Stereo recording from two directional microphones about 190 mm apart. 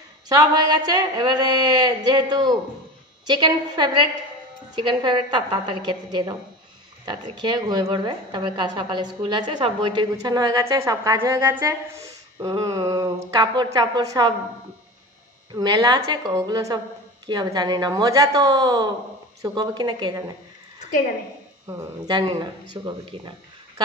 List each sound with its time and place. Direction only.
0.3 s a woman's voice: 20° right (ahead or behind)
15.5 s a woman's voice: 20° right (ahead or behind)
21.6 s a woman's voice: 20° right (ahead or behind)